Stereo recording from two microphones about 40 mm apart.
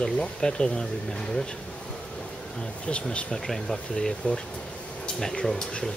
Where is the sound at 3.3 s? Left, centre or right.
Centre.